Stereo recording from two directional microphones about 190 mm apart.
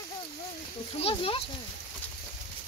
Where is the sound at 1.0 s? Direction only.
30° left (ahead or behind).